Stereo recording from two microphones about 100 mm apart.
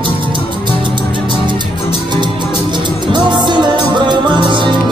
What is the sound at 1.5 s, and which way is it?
Music, 50° right (ahead or behind).